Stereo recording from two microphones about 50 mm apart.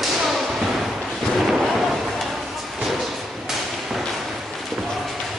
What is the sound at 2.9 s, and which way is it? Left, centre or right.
Thump, centre.